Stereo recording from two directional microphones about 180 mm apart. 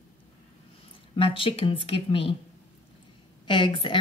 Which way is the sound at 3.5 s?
25° left (ahead or behind).